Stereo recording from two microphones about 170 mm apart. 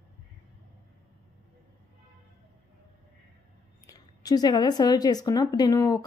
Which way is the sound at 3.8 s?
20° left (ahead or behind).